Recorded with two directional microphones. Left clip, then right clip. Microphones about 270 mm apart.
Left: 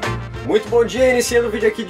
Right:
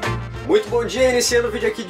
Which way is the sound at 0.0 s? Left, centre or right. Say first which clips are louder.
Left 1 dB; centre.